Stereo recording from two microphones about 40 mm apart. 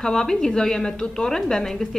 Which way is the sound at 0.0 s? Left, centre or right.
Centre.